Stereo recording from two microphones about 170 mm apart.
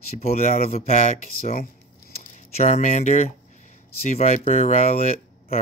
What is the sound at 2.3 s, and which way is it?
Speech, 45° left (ahead or behind).